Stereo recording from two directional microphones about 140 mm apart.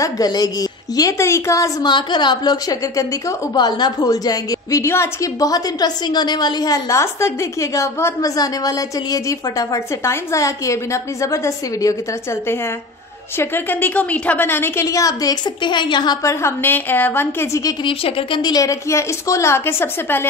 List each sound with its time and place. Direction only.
0.0 s a woman's voice: 25° left (ahead or behind)
17.8 s a woman's voice: 40° left (ahead or behind); by 20.2 s 15° left (ahead or behind)